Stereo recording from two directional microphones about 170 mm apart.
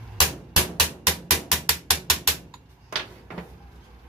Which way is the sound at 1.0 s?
Centre (ahead or behind).